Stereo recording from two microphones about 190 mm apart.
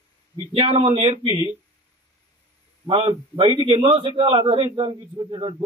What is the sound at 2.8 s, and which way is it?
A man's voice, 25° right (ahead or behind).